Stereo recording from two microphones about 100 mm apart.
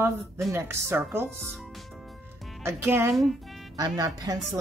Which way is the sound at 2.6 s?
25° right (ahead or behind).